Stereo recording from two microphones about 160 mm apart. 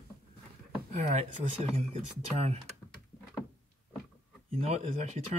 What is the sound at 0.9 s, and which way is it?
Speech, 40° right (ahead or behind).